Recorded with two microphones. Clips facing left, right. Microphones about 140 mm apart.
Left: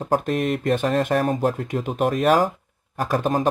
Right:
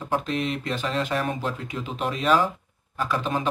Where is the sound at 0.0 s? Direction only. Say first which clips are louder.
Left 5 dB; 45° left (ahead or behind).